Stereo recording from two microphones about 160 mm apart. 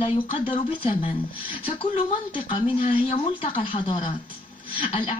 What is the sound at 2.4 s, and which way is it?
A woman's voice, 35° left (ahead or behind).